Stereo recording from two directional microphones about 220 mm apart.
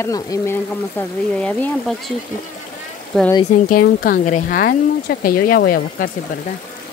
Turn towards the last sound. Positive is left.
turn(degrees=40)  # may be behind; listen again after turning